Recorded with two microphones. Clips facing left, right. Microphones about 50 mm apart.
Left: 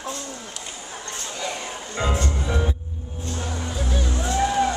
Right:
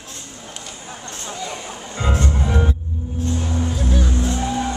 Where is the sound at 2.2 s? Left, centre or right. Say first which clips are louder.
Right 4 dB; centre.